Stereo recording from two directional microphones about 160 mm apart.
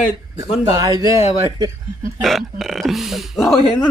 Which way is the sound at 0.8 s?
20° right (ahead or behind).